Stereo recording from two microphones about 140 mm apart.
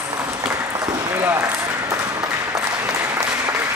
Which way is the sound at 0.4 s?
20° right (ahead or behind).